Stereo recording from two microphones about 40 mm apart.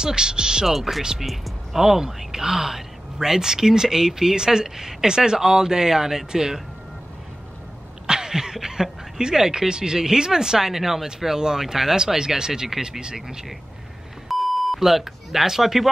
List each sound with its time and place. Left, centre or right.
0.0 s speech: centre
0.7 s speech: centre
8.1 s speech: centre
14.3 s beep: centre
14.8 s speech: centre